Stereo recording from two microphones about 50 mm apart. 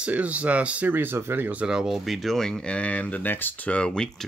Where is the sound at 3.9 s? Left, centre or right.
Centre.